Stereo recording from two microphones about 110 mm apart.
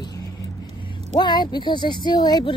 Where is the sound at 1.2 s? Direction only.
40° left (ahead or behind).